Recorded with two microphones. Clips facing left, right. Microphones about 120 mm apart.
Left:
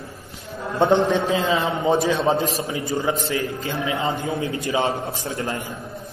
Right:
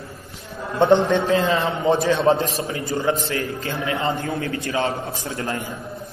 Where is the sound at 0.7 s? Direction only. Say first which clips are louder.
Right 2 dB; centre (ahead or behind).